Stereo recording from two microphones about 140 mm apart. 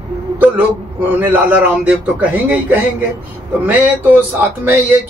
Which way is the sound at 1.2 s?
10° right (ahead or behind).